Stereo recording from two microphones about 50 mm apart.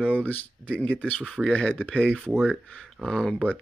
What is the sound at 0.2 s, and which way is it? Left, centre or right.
Speech, left.